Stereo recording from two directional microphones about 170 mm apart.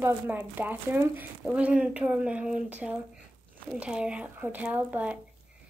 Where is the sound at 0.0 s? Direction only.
10° right (ahead or behind).